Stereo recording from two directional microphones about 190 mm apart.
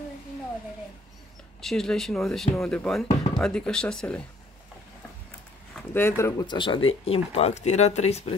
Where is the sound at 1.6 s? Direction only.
Centre (ahead or behind).